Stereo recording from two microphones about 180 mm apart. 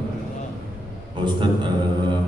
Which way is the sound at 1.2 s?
25° right (ahead or behind).